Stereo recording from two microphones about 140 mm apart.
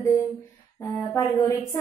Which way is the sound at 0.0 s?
20° left (ahead or behind).